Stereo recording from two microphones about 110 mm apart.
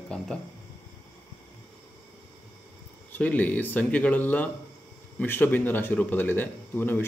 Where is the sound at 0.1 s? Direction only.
10° left (ahead or behind).